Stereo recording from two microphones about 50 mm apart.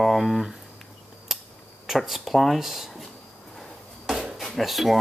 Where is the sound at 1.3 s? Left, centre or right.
Centre.